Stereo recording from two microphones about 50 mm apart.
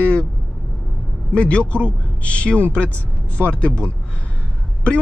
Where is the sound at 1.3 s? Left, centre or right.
Left.